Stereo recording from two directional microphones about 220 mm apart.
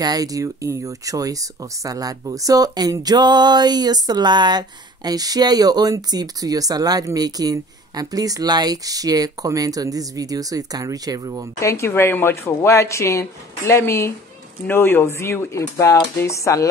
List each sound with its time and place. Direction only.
0.0 s speech: 15° right (ahead or behind)
11.6 s speech: 10° left (ahead or behind)